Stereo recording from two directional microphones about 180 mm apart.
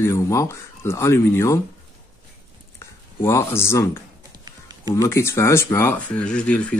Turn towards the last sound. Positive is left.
turn(degrees=5)  # may be behind; listen again after turning